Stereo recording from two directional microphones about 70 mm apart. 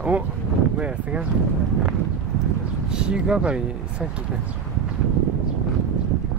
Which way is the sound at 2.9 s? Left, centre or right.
Centre.